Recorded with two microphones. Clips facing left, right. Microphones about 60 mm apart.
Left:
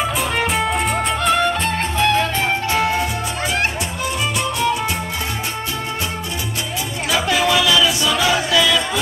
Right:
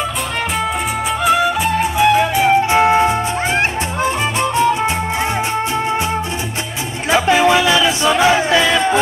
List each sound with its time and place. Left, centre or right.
1.2 s music: centre; by 3.2 s right
7.1 s music: right